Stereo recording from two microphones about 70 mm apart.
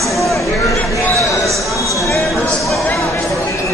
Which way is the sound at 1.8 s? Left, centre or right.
Left.